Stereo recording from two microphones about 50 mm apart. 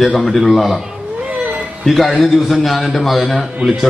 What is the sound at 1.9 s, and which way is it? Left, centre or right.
A man's voice, centre.